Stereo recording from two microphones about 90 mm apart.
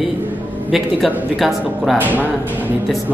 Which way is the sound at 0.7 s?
Centre (ahead or behind).